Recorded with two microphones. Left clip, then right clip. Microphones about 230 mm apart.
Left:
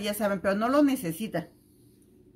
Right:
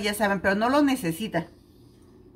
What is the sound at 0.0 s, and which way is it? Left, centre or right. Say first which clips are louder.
Speech: right 4 dB; centre.